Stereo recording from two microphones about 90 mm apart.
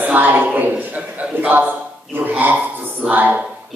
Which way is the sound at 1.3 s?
20° right (ahead or behind).